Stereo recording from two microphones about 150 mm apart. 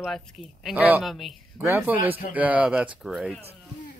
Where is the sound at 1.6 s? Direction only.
10° right (ahead or behind).